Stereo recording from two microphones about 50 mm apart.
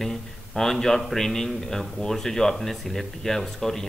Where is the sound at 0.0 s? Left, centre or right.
Centre.